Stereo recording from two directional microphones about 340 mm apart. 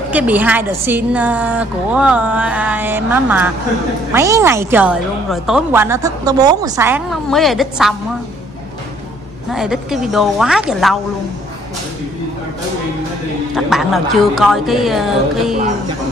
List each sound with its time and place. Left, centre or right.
0.1 s a woman's voice: centre
9.5 s a woman's voice: centre
13.6 s a woman's voice: centre